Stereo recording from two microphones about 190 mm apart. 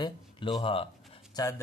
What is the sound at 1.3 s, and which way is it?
Speech, 15° left (ahead or behind).